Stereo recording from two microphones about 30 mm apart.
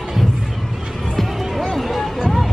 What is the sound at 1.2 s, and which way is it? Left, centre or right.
Music, centre.